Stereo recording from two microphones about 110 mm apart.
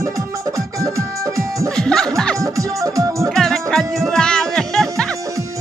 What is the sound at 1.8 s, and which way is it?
Music, 5° left (ahead or behind).